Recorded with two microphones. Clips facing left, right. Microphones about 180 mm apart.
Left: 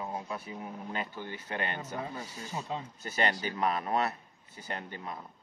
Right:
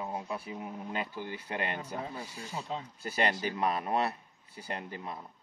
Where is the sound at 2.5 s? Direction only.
15° left (ahead or behind).